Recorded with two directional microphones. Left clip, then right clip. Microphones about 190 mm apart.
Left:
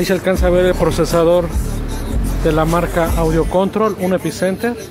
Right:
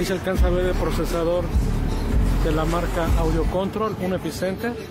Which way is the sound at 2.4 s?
25° left (ahead or behind).